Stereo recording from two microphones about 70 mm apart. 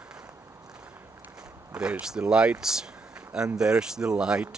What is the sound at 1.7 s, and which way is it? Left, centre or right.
Speech, centre.